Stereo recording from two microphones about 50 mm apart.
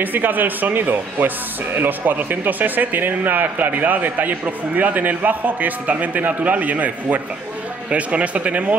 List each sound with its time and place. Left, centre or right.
0.0 s speech: right